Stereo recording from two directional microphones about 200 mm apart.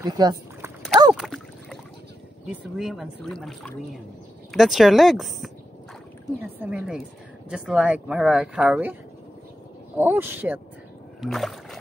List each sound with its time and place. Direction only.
0.0 s speech: 20° right (ahead or behind)
1.1 s a sound: centre (ahead or behind)
2.4 s speech: centre (ahead or behind)
6.6 s speech: 5° right (ahead or behind)
9.9 s speech: 10° right (ahead or behind)
11.1 s rowboat: centre (ahead or behind)